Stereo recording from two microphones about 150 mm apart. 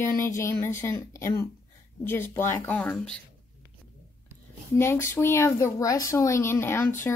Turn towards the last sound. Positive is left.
turn(degrees=15)  # may be behind; listen again after turning